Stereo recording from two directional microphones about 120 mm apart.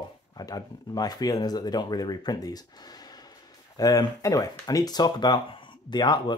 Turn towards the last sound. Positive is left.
turn(degrees=35)  # may be behind; listen again after turning